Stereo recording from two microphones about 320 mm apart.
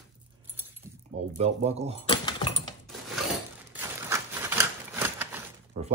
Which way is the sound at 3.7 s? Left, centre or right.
Centre.